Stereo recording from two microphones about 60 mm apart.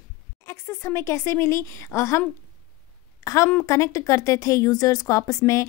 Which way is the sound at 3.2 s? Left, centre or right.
Left.